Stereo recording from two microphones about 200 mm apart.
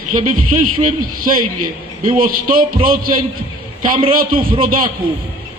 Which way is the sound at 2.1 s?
45° right (ahead or behind).